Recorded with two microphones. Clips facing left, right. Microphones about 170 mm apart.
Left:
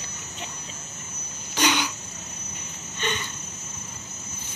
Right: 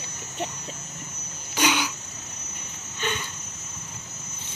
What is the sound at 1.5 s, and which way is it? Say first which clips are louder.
Throat clearing: even; 10° right (ahead or behind).